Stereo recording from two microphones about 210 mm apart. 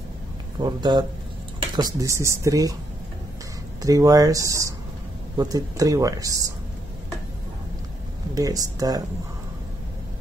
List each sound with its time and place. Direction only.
0.6 s speech: 20° right (ahead or behind)
3.8 s speech: 15° right (ahead or behind)
8.4 s speech: 15° right (ahead or behind)